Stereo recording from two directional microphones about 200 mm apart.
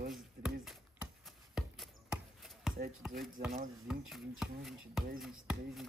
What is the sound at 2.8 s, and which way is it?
Speech, 50° right (ahead or behind).